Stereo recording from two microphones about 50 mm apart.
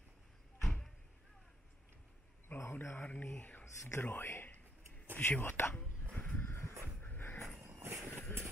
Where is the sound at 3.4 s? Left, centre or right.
Left.